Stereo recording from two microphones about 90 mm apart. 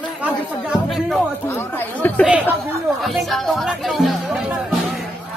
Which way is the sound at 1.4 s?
25° left (ahead or behind).